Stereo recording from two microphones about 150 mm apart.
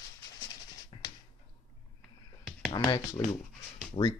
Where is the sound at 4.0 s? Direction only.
35° left (ahead or behind).